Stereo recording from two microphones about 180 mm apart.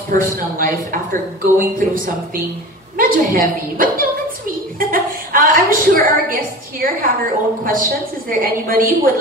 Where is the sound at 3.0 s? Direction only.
50° right (ahead or behind).